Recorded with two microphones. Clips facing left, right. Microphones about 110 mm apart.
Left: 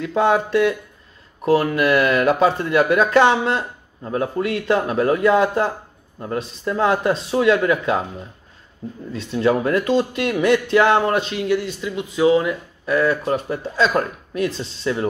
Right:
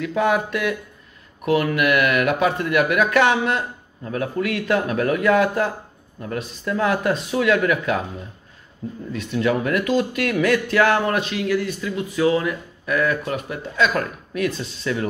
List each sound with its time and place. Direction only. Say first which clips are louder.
0.0 s speech: left 2 dB; 30° left (ahead or behind)
9.1 s speech: left 3 dB; 30° left (ahead or behind)